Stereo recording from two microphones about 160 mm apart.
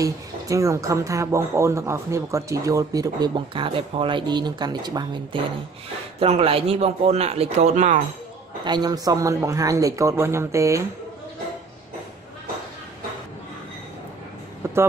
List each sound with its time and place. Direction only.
0.0 s speech: 20° right (ahead or behind)
6.1 s a man's voice: 40° right (ahead or behind)
8.6 s speech: 25° right (ahead or behind)